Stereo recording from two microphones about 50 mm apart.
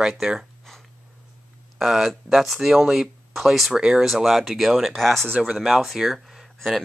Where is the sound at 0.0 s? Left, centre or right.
Centre.